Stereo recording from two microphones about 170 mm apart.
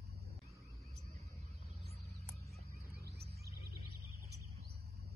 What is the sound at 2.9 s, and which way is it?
Music, 70° right (ahead or behind).